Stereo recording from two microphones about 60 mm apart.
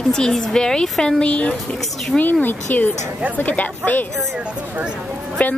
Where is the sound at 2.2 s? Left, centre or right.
Left.